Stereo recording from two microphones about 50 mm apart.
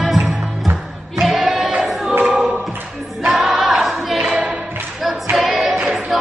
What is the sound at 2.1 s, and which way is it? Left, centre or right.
Choir, right.